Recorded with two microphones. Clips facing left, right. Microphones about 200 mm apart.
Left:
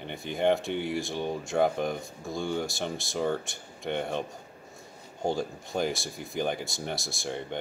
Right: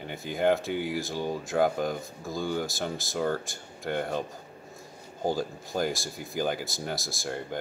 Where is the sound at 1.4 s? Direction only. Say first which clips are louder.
Even; centre (ahead or behind).